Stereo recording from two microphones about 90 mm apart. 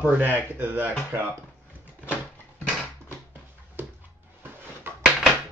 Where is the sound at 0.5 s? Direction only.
20° right (ahead or behind).